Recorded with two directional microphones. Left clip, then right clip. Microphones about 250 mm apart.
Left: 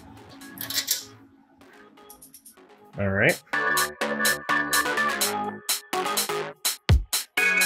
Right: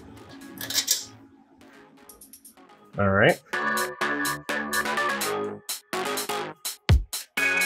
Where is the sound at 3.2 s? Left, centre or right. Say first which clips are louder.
Even; centre.